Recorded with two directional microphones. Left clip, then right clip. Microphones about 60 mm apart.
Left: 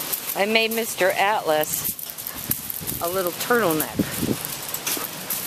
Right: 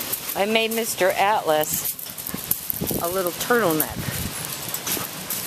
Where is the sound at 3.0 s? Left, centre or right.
Centre.